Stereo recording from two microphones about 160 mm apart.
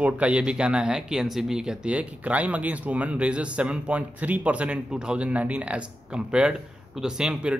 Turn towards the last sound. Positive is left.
turn(degrees=-5)  # may be behind; listen again after turning